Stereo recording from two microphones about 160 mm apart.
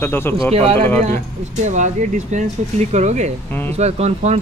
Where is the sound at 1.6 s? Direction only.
50° right (ahead or behind).